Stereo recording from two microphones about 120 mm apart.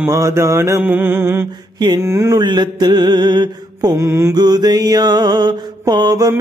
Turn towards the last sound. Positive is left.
turn(degrees=-35)  # may be behind; listen again after turning